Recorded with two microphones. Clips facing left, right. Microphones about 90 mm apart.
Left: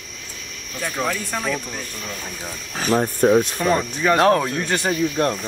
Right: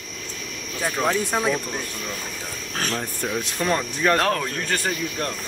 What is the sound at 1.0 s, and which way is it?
Speech, 15° right (ahead or behind).